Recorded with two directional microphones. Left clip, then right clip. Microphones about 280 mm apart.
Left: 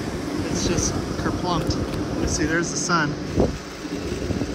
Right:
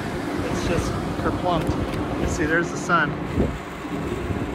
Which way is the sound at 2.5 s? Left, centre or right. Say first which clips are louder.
Right 3 dB; centre.